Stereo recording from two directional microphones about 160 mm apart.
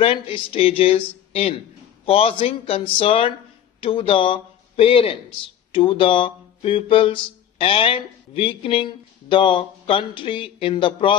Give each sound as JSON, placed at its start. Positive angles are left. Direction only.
{"t": 0.0, "sound": "speech", "side_deg": 35}